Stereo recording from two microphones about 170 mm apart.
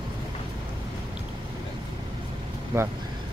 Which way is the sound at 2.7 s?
15° right (ahead or behind).